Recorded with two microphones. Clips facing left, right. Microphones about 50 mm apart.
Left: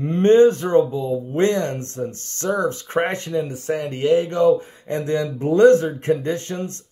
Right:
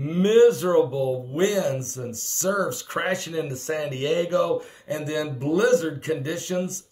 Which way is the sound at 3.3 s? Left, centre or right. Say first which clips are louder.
Left 4 dB; centre.